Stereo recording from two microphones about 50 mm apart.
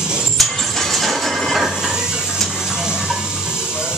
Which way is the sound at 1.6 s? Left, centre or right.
Centre.